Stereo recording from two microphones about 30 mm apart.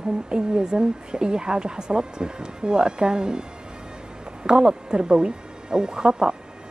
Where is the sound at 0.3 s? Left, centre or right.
Right.